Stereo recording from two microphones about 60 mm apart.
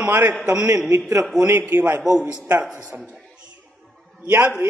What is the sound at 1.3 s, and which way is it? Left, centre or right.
Speech, right.